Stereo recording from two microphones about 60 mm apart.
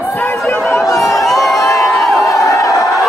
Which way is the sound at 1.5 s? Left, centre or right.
Left.